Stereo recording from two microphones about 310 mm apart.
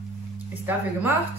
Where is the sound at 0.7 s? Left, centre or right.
Centre.